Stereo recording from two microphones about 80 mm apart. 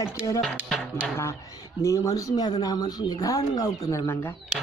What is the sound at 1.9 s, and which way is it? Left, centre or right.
Speech, left.